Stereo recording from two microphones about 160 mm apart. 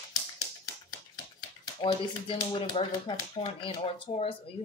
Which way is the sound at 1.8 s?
30° left (ahead or behind).